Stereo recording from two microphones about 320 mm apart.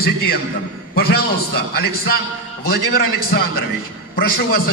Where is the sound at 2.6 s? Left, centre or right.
Left.